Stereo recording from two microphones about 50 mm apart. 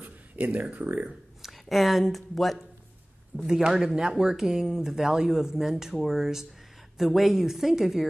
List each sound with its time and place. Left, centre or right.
0.0 s speech: right
1.4 s speech: centre
3.4 s a woman's voice: centre